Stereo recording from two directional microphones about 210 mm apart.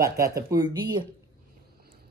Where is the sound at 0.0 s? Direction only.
15° right (ahead or behind).